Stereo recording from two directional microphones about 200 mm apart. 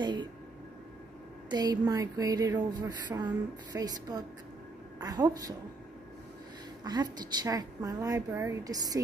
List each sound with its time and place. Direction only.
0.0 s speech: 20° right (ahead or behind)
1.5 s speech: 20° right (ahead or behind)
6.8 s a woman's voice: 20° right (ahead or behind)